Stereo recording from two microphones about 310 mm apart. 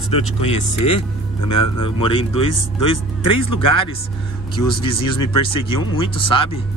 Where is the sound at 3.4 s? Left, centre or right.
Left.